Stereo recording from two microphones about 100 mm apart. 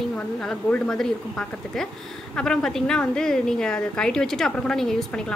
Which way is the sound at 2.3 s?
5° left (ahead or behind).